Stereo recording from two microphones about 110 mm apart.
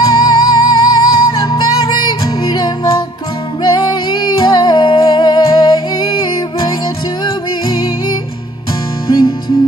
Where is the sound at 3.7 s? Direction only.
40° left (ahead or behind).